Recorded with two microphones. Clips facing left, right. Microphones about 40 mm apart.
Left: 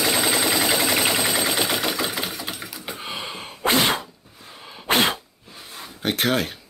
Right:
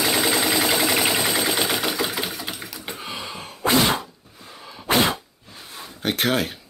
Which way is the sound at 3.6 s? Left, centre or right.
Left.